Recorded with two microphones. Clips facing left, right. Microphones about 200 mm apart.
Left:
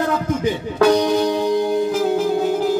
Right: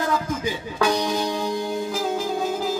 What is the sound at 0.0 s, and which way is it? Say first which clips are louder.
Music: left 5 dB; 60° left (ahead or behind).